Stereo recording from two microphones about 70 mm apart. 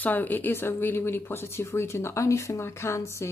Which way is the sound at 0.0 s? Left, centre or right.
Left.